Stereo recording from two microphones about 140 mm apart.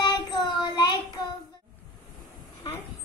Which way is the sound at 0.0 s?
30° left (ahead or behind).